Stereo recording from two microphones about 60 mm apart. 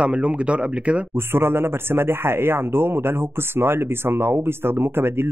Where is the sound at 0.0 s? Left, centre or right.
Centre.